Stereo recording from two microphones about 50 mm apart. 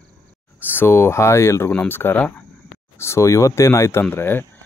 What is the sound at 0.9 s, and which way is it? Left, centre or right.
Speech, left.